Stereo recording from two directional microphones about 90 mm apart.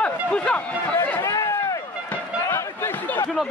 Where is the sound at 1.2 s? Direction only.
35° left (ahead or behind).